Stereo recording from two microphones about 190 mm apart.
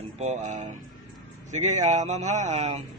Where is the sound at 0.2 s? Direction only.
40° right (ahead or behind).